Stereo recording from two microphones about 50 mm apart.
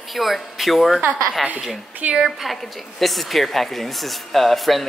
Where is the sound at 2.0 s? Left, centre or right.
Right.